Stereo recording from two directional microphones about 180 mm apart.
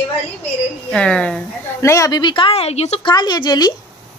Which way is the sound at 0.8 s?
5° left (ahead or behind).